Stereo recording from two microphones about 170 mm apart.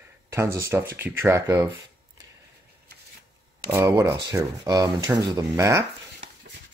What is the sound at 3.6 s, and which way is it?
Speech, 20° right (ahead or behind).